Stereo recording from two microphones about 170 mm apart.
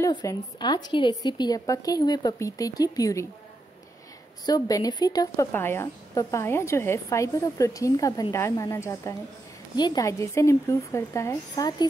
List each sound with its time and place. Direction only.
0.0 s speech: 20° left (ahead or behind)
4.5 s a woman's voice: 20° left (ahead or behind)